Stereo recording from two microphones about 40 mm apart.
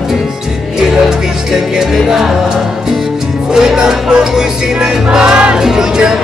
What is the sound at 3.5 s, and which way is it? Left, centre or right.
Music, centre.